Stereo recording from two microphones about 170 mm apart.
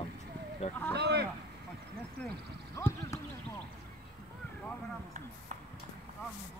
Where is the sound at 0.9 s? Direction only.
75° right (ahead or behind).